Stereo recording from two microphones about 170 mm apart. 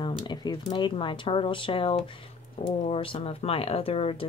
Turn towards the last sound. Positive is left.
turn(degrees=35)  # may be behind; listen again after turning